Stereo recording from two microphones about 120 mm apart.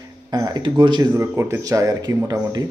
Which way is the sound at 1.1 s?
15° right (ahead or behind).